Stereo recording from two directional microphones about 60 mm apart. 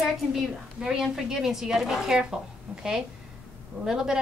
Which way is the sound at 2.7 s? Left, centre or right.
Right.